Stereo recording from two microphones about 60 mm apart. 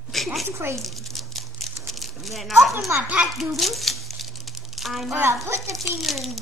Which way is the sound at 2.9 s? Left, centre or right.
Right.